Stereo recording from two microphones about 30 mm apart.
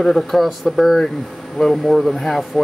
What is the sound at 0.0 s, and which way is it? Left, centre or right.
Speech, centre.